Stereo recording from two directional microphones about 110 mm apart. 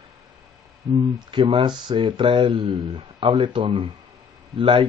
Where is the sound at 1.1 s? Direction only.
45° right (ahead or behind).